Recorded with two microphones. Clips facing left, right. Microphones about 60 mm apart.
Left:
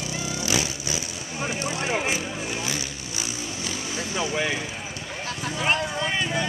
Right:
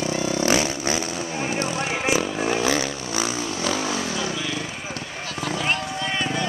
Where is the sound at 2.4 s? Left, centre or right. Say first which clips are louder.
Right 8 dB; right.